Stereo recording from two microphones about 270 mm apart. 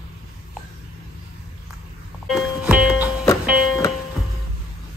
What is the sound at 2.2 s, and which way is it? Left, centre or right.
Music, centre.